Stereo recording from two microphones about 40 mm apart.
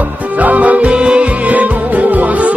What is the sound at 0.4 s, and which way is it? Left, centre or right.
Music, right.